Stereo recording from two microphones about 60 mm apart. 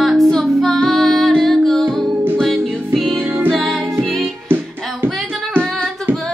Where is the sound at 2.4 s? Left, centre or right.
Centre.